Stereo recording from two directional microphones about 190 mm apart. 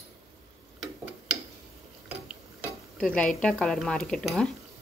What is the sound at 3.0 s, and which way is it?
Speech, 5° left (ahead or behind).